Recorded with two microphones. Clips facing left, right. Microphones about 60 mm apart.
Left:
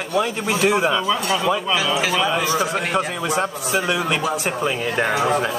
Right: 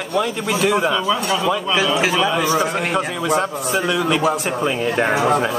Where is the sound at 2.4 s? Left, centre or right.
Right.